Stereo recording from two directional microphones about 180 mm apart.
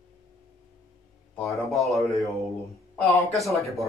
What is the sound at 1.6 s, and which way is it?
Speech, centre (ahead or behind).